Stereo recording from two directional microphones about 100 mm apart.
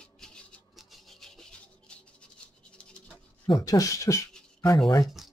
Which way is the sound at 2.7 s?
10° left (ahead or behind).